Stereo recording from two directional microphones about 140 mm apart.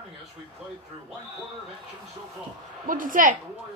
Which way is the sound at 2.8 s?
75° right (ahead or behind).